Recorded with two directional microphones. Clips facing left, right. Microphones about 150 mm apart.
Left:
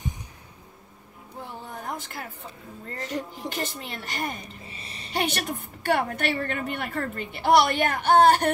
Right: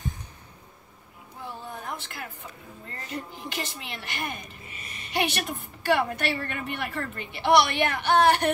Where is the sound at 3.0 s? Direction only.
90° left.